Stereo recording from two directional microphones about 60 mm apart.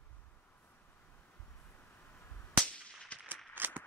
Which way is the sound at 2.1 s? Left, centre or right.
Left.